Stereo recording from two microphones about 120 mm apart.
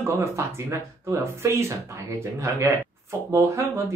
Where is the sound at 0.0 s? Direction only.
20° right (ahead or behind).